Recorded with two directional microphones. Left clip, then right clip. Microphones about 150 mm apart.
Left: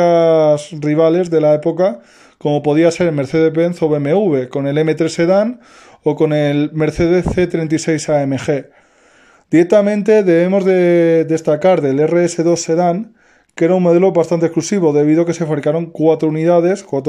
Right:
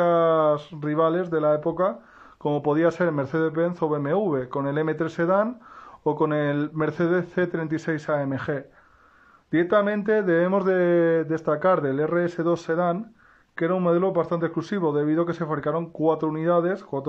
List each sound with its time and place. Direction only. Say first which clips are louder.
0.0 s speech: left 9 dB; 5° left (ahead or behind)